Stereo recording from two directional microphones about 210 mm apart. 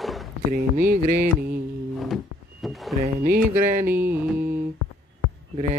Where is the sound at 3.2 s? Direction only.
40° right (ahead or behind).